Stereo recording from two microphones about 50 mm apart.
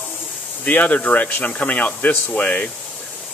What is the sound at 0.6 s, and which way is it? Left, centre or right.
Speech, left.